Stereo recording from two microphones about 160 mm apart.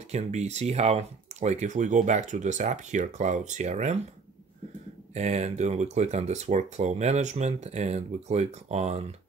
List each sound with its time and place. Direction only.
0.1 s speech: 45° right (ahead or behind)
5.1 s speech: 45° right (ahead or behind)